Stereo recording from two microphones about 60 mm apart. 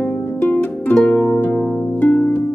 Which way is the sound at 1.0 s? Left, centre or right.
Centre.